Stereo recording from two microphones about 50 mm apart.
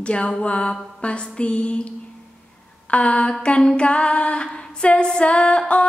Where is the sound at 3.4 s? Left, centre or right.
Centre.